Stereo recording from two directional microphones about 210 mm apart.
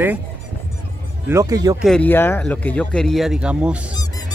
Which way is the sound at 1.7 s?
5° left (ahead or behind).